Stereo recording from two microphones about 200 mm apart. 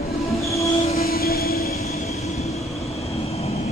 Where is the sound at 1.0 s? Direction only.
50° left (ahead or behind).